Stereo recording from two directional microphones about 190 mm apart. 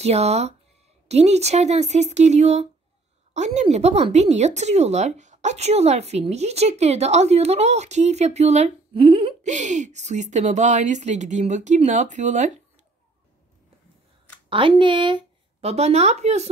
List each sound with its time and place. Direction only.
0.0 s speech: 35° right (ahead or behind)
14.5 s speech: 25° right (ahead or behind)